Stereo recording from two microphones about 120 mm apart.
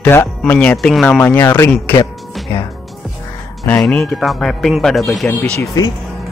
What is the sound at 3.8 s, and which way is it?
Speech, 5° left (ahead or behind).